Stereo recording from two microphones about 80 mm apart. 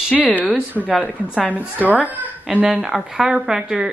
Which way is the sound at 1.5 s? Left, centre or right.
Centre.